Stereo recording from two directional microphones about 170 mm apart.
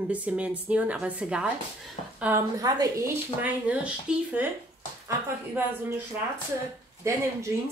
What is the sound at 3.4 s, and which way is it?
Speech, 10° right (ahead or behind).